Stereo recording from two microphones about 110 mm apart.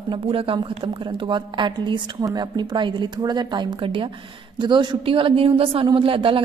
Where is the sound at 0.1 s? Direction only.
55° right (ahead or behind).